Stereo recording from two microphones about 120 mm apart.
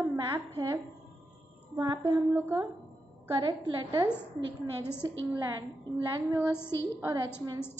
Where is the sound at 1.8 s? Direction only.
35° right (ahead or behind).